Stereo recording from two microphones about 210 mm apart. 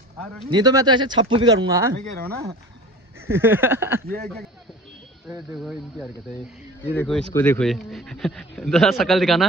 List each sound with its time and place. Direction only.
0.5 s speech: 20° right (ahead or behind)
3.2 s a sound: 10° right (ahead or behind)
5.6 s speech: centre (ahead or behind)